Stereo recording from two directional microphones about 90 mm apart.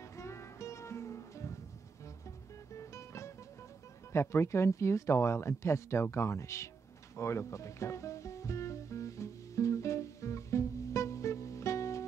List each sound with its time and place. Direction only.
0.0 s music: 35° left (ahead or behind)
4.1 s speech: 30° left (ahead or behind)
7.2 s music: 35° left (ahead or behind)